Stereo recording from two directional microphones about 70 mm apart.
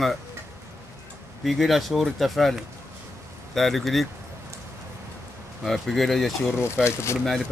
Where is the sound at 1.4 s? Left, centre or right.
Centre.